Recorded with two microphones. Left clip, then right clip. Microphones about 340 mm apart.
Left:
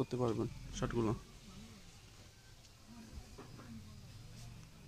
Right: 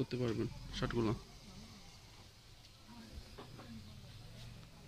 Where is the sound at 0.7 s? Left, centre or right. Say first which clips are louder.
Even; centre.